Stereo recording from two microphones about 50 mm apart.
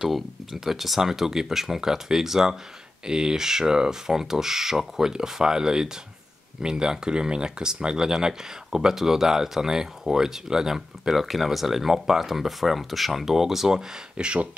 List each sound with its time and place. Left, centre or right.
0.0 s speech: centre
14.1 s speech: right